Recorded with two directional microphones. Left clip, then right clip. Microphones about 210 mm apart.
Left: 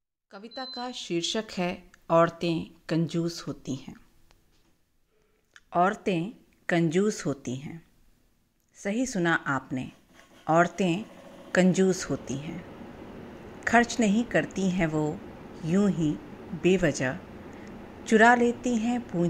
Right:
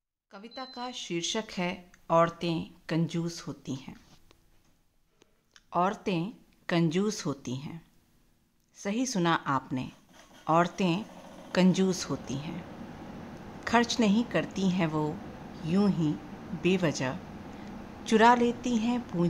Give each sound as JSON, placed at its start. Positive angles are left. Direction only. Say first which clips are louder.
{"t": 0.3, "sound": "speech", "louder": "left 4 dB", "side_deg": 15}
{"t": 5.5, "sound": "a woman's voice", "louder": "left 4 dB", "side_deg": 10}
{"t": 13.6, "sound": "speech", "louder": "left 3 dB", "side_deg": 10}